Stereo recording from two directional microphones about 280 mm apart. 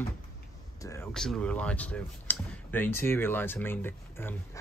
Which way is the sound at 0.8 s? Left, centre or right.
Centre.